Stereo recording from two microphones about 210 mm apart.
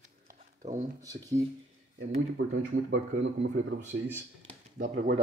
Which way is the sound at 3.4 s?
55° right (ahead or behind).